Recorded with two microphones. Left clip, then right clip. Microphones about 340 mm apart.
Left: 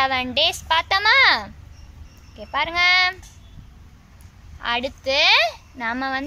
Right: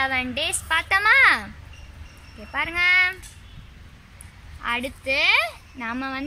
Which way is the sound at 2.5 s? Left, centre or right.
Left.